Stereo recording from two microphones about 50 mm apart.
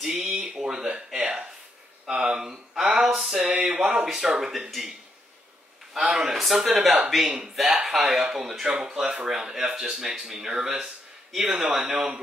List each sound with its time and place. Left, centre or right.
0.0 s speech: centre
0.5 s a sound: centre
2.0 s speech: centre
3.3 s speech: centre
6.3 s speech: centre